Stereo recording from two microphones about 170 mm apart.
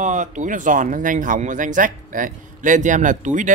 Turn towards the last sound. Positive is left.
turn(degrees=-45)  # may be behind; listen again after turning